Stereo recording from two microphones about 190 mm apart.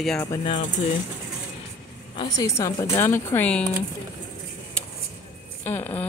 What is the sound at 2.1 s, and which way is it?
Speech, 20° left (ahead or behind).